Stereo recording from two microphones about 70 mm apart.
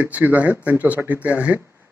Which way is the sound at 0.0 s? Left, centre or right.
Right.